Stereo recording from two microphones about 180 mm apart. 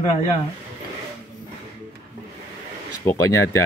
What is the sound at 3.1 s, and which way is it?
Speech, 15° left (ahead or behind).